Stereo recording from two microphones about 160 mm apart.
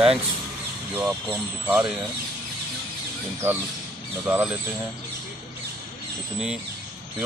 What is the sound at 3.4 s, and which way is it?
Speech, 10° right (ahead or behind).